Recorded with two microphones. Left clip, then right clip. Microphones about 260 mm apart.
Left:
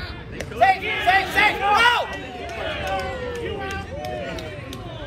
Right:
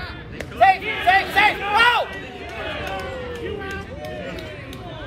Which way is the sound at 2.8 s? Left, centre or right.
Left.